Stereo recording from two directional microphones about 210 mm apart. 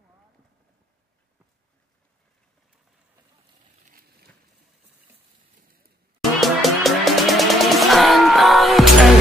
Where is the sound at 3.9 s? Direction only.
45° right (ahead or behind).